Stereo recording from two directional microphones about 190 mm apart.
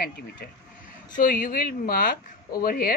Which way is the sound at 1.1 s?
45° left (ahead or behind).